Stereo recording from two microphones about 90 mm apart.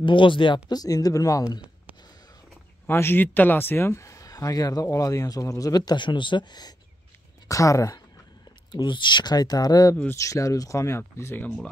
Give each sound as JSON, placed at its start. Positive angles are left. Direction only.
{"t": 0.0, "sound": "speech", "side_deg": 70}
{"t": 0.7, "sound": "speech", "side_deg": 45}
{"t": 2.9, "sound": "speech", "side_deg": 25}
{"t": 7.4, "sound": "speech", "side_deg": 35}
{"t": 8.7, "sound": "speech", "side_deg": 60}